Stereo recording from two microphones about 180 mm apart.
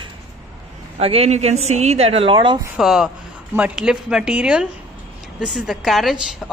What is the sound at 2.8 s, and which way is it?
Speech, centre (ahead or behind).